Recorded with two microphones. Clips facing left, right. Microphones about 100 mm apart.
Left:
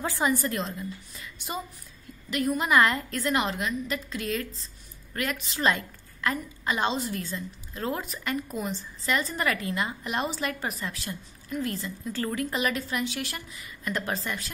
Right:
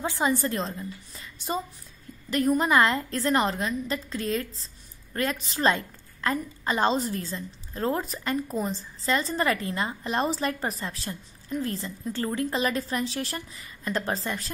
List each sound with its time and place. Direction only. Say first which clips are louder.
0.0 s a woman's voice: right 1 dB; 25° right (ahead or behind)